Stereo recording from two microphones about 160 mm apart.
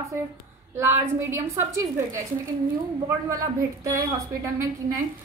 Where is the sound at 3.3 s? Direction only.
20° right (ahead or behind).